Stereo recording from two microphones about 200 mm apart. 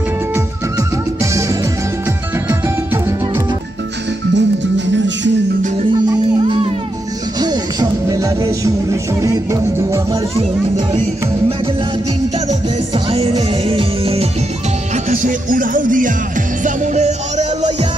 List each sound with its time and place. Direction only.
4.4 s music: 65° right (ahead or behind)
5.9 s music: 25° right (ahead or behind)
10.9 s music: 30° right (ahead or behind)
15.0 s music: 40° right (ahead or behind)